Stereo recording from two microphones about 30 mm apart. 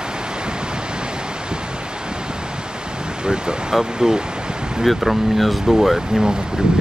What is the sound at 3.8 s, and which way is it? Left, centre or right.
Speech, right.